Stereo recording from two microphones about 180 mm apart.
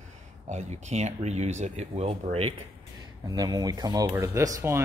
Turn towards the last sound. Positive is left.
turn(degrees=-15)  # may be behind; listen again after turning